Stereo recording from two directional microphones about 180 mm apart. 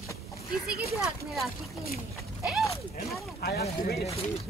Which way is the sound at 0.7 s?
Centre (ahead or behind).